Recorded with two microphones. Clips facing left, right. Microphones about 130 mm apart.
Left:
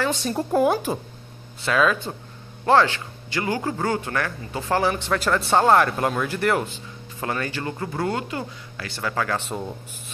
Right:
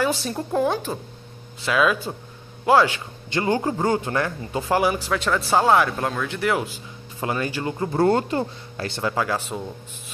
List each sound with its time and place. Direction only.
0.0 s speech: centre (ahead or behind)
1.6 s speech: 10° right (ahead or behind)
3.3 s speech: 25° right (ahead or behind); by 6.7 s centre (ahead or behind)
7.2 s speech: 20° right (ahead or behind)
8.0 s speech: 35° right (ahead or behind); by 9.4 s 15° right (ahead or behind)